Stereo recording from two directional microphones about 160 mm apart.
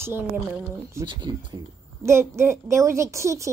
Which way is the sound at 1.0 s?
30° right (ahead or behind).